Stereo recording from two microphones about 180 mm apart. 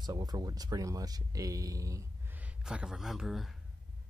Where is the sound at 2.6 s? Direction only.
5° right (ahead or behind).